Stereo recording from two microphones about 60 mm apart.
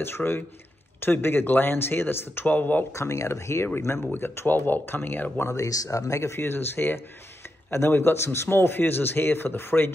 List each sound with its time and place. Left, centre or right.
0.0 s speech: left
2.9 s speech: left
5.5 s speech: left